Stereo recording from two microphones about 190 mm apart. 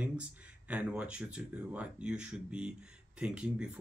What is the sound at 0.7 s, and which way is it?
Speech, 5° right (ahead or behind).